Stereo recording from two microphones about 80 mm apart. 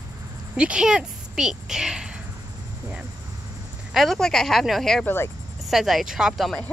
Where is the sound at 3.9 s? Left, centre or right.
Centre.